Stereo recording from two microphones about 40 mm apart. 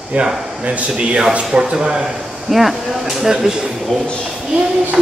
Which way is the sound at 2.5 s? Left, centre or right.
Centre.